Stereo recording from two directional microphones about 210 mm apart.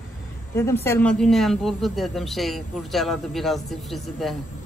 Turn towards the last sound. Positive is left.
turn(degrees=0)  # may be behind; listen again after turning